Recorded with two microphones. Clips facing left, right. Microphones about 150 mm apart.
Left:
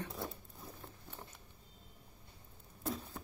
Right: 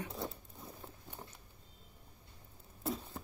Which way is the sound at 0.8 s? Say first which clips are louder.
Right 1 dB; 15° right (ahead or behind).